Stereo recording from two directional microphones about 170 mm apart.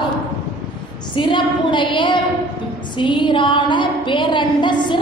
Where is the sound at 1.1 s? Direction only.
30° left (ahead or behind).